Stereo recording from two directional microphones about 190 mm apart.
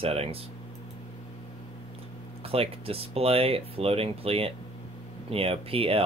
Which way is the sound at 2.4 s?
30° right (ahead or behind).